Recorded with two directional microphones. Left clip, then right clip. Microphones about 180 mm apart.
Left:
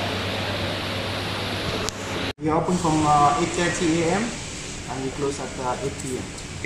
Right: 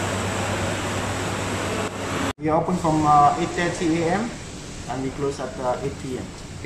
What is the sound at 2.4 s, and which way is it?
Speech, 5° right (ahead or behind).